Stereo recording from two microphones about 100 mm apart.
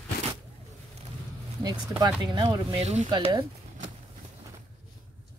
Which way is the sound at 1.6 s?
40° right (ahead or behind).